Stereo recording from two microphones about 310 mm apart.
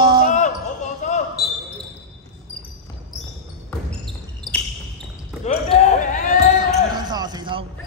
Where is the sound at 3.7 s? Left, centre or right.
Centre.